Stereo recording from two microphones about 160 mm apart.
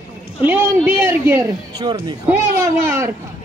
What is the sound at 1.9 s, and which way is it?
Speech, 30° right (ahead or behind).